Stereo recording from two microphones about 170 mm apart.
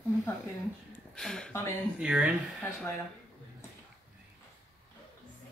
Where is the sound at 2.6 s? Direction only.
10° left (ahead or behind).